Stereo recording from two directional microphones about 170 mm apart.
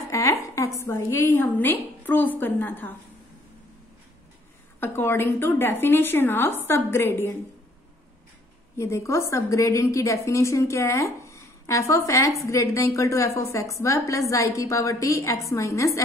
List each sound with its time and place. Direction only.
0.1 s a woman's voice: 20° left (ahead or behind)
4.7 s a woman's voice: 10° left (ahead or behind)
8.7 s a woman's voice: 15° left (ahead or behind)